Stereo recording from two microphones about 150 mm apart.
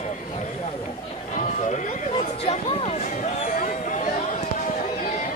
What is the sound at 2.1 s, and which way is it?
Speech, 40° left (ahead or behind).